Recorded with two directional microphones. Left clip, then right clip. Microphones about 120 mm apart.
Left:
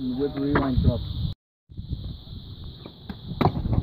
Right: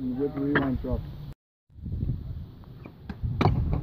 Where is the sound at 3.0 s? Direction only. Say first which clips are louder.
Left 3 dB; 10° left (ahead or behind).